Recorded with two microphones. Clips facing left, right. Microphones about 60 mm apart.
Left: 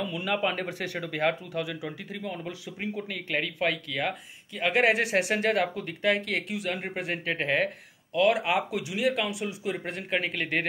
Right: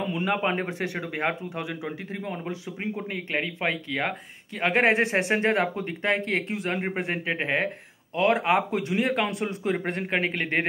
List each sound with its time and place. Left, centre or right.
0.0 s a man's voice: right
8.1 s a man's voice: right